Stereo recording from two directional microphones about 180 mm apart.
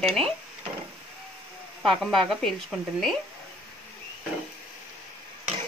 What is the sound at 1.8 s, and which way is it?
Speech, centre (ahead or behind).